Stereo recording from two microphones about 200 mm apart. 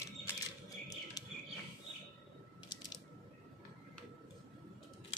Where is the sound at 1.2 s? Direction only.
20° left (ahead or behind).